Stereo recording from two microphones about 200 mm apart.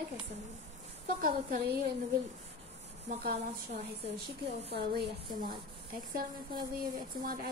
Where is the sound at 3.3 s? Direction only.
55° right (ahead or behind).